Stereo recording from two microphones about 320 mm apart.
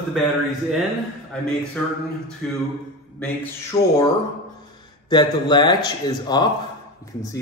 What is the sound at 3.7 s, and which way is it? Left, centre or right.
Music, centre.